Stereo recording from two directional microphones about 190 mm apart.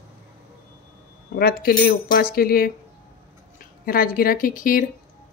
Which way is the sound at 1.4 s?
55° left (ahead or behind).